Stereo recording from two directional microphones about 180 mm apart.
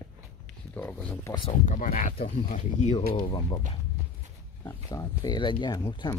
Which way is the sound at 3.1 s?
25° left (ahead or behind).